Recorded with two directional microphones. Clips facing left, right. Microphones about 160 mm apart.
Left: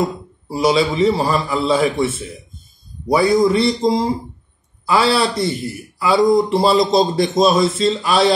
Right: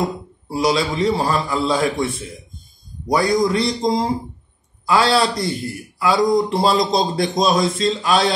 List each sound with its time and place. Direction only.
0.0 s a man's voice: centre (ahead or behind)